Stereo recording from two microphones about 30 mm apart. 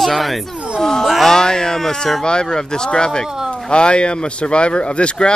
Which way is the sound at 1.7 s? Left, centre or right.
Centre.